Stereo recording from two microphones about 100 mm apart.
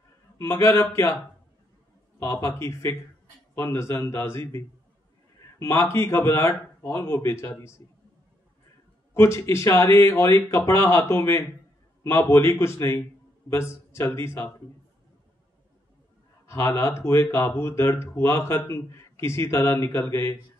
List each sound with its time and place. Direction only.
0.4 s speech: 30° left (ahead or behind)
2.1 s speech: 25° left (ahead or behind)
9.1 s speech: 25° left (ahead or behind)
16.4 s speech: 30° left (ahead or behind)